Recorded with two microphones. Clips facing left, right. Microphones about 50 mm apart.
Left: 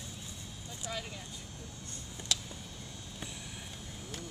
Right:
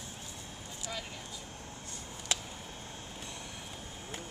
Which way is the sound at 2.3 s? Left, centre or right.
Right.